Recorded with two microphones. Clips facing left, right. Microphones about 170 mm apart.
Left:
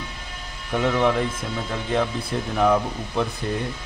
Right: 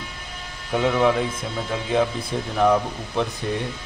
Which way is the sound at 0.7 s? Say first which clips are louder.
Right 1 dB; 5° right (ahead or behind).